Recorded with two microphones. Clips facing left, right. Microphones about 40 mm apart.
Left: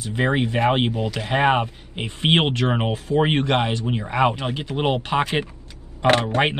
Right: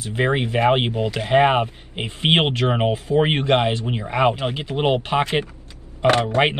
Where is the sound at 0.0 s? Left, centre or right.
Right.